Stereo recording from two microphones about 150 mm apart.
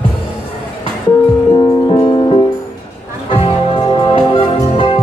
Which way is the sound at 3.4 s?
30° left (ahead or behind).